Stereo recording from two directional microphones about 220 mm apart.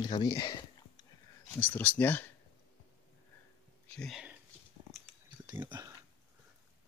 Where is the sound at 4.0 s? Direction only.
Centre (ahead or behind).